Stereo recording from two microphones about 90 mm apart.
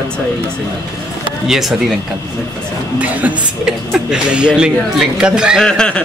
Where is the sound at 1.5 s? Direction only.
5° right (ahead or behind).